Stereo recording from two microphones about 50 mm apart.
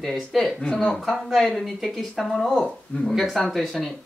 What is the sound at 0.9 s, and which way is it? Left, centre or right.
Speech, centre.